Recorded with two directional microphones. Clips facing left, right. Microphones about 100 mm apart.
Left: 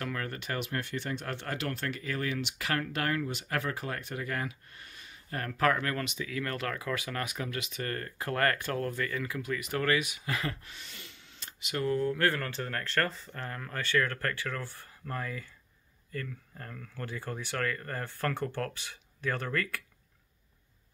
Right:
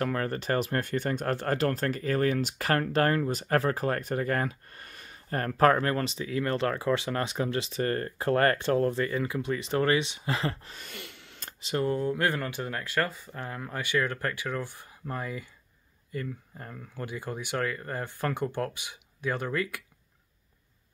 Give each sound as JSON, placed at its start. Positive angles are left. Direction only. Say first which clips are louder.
{"t": 0.0, "sound": "speech", "louder": "right 7 dB", "side_deg": -35}
{"t": 10.8, "sound": "a sound", "louder": "right 6 dB", "side_deg": -60}
{"t": 11.6, "sound": "speech", "louder": "right 2 dB", "side_deg": -25}